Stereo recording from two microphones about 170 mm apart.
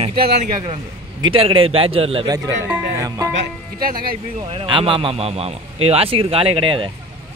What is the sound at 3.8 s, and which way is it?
Speech, 60° right (ahead or behind).